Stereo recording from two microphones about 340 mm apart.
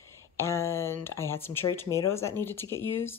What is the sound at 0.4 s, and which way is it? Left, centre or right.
Speech, centre.